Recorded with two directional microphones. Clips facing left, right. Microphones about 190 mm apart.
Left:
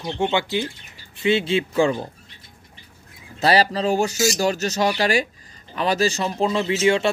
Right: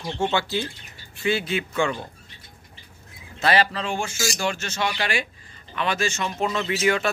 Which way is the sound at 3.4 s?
35° left (ahead or behind).